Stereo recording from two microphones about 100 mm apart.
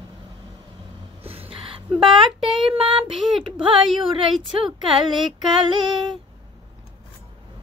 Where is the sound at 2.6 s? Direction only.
65° right (ahead or behind).